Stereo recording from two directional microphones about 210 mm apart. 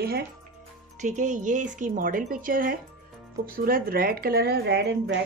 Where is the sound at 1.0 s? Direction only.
35° right (ahead or behind).